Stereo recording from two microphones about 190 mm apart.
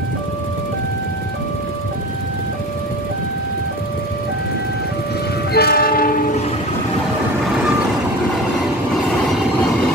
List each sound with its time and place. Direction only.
5.5 s train: 55° left (ahead or behind)